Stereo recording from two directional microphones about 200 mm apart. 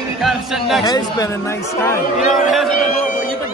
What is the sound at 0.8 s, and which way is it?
Speech, 20° left (ahead or behind).